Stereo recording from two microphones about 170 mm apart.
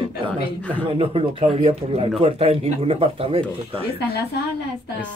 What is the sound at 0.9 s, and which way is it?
Speech, 35° right (ahead or behind).